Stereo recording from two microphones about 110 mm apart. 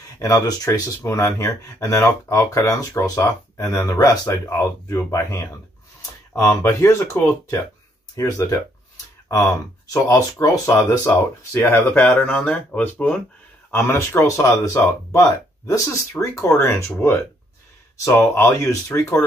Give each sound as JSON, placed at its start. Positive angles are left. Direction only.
{"t": 0.2, "sound": "speech", "side_deg": 30}
{"t": 13.7, "sound": "speech", "side_deg": 25}